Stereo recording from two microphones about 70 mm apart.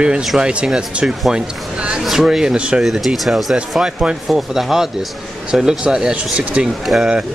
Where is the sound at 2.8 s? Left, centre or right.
Centre.